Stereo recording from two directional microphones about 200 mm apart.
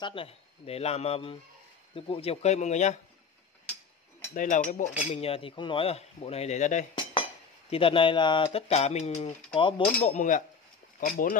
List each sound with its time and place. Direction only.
0.0 s speech: 25° left (ahead or behind)
4.3 s speech: 40° left (ahead or behind)
5.1 s speech: 30° left (ahead or behind)
7.7 s speech: 25° left (ahead or behind)
10.0 s speech: 40° left (ahead or behind)